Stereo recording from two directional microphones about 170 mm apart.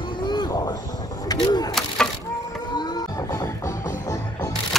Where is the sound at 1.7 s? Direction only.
5° left (ahead or behind).